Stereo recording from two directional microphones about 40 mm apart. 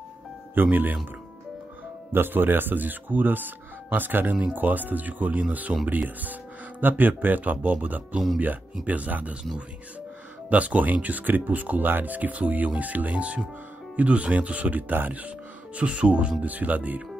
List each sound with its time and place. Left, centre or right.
0.6 s speech: right
2.1 s speech: right
10.5 s speech: right